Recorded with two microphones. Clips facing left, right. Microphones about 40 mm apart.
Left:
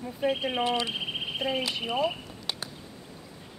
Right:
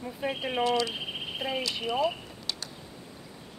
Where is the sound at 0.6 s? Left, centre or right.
Left.